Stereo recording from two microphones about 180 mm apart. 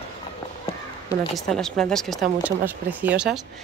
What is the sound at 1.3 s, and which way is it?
Speech, 5° left (ahead or behind).